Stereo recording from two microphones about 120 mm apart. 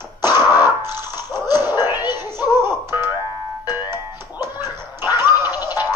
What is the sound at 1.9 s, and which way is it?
Music, 35° left (ahead or behind).